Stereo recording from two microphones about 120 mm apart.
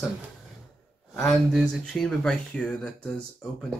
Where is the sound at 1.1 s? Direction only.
Centre (ahead or behind).